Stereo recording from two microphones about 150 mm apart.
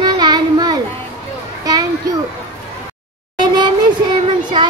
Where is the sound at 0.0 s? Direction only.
30° right (ahead or behind).